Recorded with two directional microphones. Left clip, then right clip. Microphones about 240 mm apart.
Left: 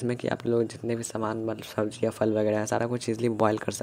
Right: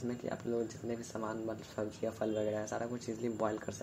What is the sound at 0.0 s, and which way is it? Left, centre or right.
Speech, left.